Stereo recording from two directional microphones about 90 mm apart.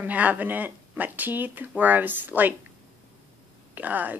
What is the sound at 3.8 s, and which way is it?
Speech, 20° right (ahead or behind).